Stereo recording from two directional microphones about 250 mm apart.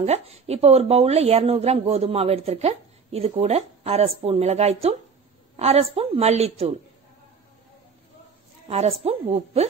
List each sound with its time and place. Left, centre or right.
0.0 s speech: right
8.6 s speech: right